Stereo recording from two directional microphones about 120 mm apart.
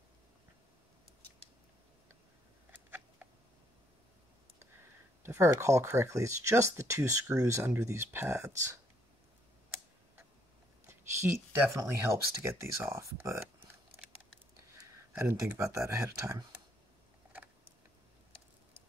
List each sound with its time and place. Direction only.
2.7 s cat: 15° right (ahead or behind)
5.2 s speech: 20° right (ahead or behind)
10.9 s speech: 25° right (ahead or behind)
15.1 s speech: 20° right (ahead or behind)